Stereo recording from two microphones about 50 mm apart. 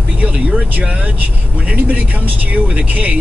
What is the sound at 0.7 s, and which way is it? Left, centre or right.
Speech, right.